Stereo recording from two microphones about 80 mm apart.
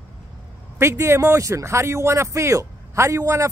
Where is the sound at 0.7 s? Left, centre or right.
Right.